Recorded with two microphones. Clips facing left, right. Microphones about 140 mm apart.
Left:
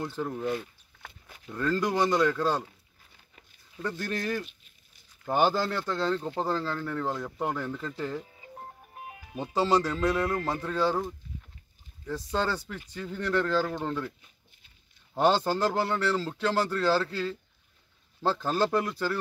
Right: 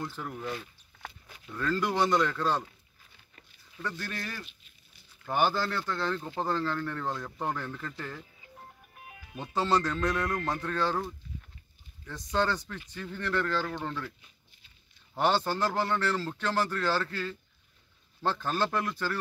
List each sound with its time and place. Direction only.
0.2 s speech: 25° left (ahead or behind)
1.5 s speech: 15° left (ahead or behind)
5.6 s speech: 15° left (ahead or behind)
8.9 s music: 30° left (ahead or behind)
9.5 s speech: 10° left (ahead or behind)
12.1 s speech: 10° left (ahead or behind)
15.1 s speech: 15° left (ahead or behind)
16.9 s speech: 30° left (ahead or behind)
18.2 s speech: 15° left (ahead or behind)